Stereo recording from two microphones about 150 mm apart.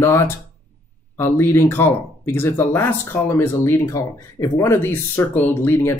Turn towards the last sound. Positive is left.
turn(degrees=15)  # may be behind; listen again after turning